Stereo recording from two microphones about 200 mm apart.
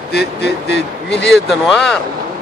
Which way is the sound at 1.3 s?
Centre (ahead or behind).